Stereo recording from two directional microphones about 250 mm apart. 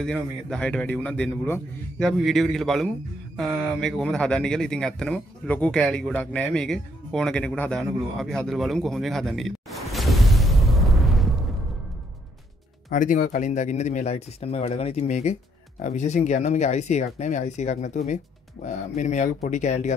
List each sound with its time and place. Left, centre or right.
0.0 s speech: centre
12.9 s speech: left